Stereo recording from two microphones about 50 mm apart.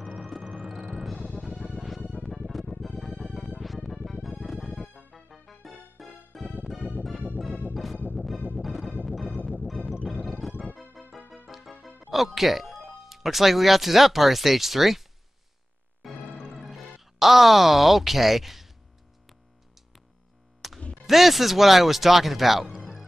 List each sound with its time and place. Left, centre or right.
0.3 s music: centre
7.7 s music: centre
8.4 s music: right
9.4 s music: left
10.4 s music: centre
16.7 s speech: centre
20.6 s music: centre
21.1 s speech: centre